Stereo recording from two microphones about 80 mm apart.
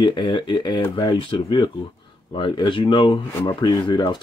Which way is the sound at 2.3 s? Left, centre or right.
Left.